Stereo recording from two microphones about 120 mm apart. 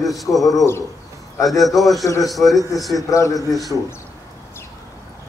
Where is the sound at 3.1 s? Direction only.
25° left (ahead or behind).